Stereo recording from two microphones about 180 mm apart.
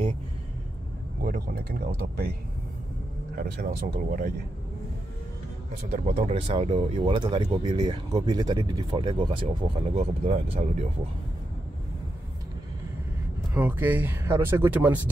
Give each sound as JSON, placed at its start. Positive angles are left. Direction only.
{"t": 1.2, "sound": "speech", "side_deg": -50}
{"t": 3.3, "sound": "speech", "side_deg": -50}
{"t": 5.9, "sound": "speech", "side_deg": -40}
{"t": 9.9, "sound": "speech", "side_deg": -35}
{"t": 13.5, "sound": "speech", "side_deg": -10}